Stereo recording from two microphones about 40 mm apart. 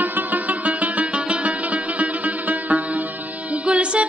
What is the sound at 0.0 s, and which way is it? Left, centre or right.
Music, right.